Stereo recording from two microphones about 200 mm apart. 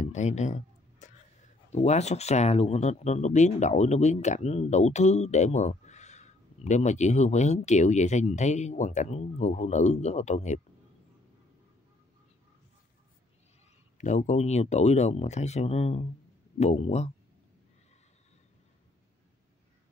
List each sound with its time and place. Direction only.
0.0 s speech: 35° left (ahead or behind)
13.9 s speech: 35° left (ahead or behind)